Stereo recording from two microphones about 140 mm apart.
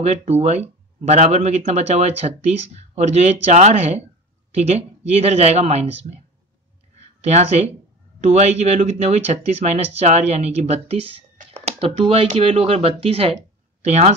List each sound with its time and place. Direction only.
0.0 s speech: 50° right (ahead or behind)
7.2 s speech: 50° right (ahead or behind)
11.3 s a sound: 50° right (ahead or behind)
12.3 s speech: 45° right (ahead or behind)